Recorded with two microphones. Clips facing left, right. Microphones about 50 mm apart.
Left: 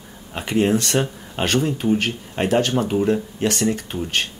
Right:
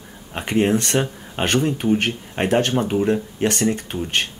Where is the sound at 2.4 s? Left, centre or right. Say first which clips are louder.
Even; right.